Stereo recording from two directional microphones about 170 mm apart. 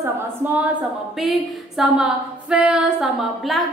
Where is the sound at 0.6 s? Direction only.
5° right (ahead or behind).